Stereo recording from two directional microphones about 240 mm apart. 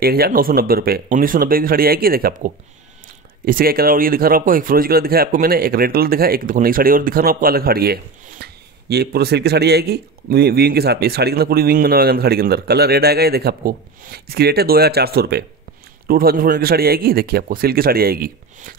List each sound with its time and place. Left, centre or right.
0.0 s speech: right